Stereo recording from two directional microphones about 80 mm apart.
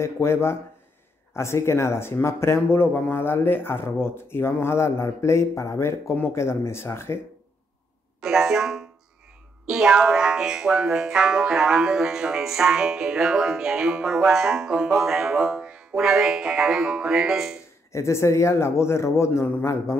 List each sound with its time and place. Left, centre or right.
0.0 s speech: left
8.2 s speech: centre
17.9 s speech: left